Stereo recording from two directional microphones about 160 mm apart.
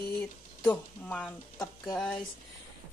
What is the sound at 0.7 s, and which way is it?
Speech, 10° left (ahead or behind).